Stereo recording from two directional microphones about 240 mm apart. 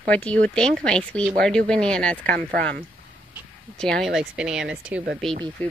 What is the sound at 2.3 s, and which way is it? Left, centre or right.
Speech, right.